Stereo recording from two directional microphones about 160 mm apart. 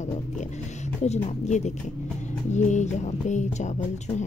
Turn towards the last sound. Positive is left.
turn(degrees=45)  # may be behind; listen again after turning